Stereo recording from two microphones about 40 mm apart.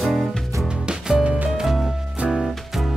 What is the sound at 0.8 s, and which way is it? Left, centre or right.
Music, centre.